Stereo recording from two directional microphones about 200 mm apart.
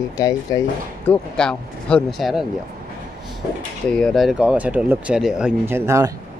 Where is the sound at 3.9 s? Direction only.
5° left (ahead or behind); by 6.1 s 15° right (ahead or behind).